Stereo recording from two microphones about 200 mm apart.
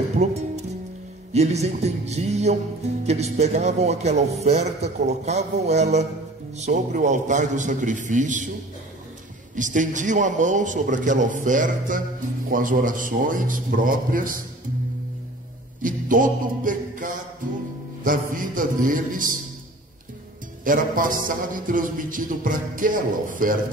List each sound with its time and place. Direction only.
1.3 s speech: 35° right (ahead or behind)
9.6 s a man's voice: 40° right (ahead or behind)
15.8 s a man's voice: 40° right (ahead or behind)
20.6 s a man's voice: 45° right (ahead or behind)